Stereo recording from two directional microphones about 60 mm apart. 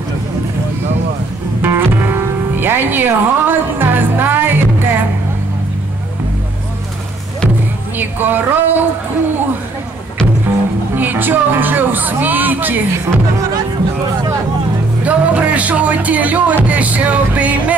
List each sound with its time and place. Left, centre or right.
1.6 s music: right
8.0 s speech: right
11.0 s speech: right
15.0 s speech: right
16.6 s music: right